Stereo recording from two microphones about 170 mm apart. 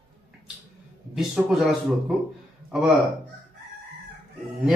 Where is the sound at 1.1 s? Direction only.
5° right (ahead or behind).